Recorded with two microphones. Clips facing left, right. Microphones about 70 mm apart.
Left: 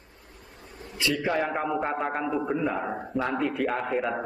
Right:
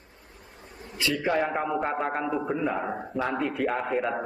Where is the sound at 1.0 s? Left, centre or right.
Centre.